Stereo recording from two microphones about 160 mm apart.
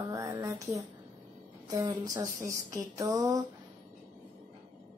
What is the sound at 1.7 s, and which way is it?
Speech, 20° right (ahead or behind).